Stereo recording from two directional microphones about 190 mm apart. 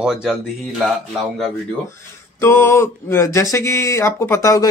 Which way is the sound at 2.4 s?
10° left (ahead or behind).